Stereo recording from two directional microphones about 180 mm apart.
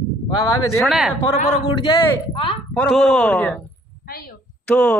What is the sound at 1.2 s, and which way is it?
A woman's voice, 35° left (ahead or behind).